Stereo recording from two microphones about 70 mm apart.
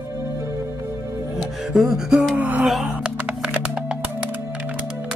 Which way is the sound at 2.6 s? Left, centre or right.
Centre.